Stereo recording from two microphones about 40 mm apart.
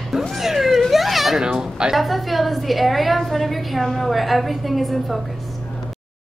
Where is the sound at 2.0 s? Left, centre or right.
Centre.